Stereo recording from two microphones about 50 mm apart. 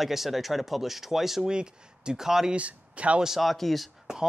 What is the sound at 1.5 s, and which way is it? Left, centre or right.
Speech, centre.